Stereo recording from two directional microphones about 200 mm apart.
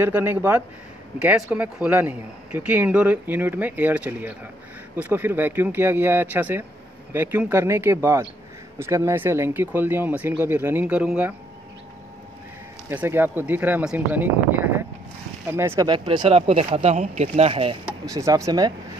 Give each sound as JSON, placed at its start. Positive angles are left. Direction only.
{"t": 0.0, "sound": "a man's voice", "side_deg": -10}
{"t": 12.9, "sound": "a man's voice", "side_deg": -10}
{"t": 18.0, "sound": "a man's voice", "side_deg": -15}